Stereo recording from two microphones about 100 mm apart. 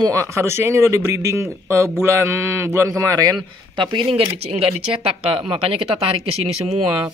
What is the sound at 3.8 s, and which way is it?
Speech, 55° right (ahead or behind).